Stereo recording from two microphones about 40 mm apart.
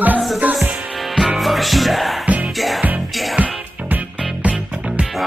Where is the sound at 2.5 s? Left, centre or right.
Centre.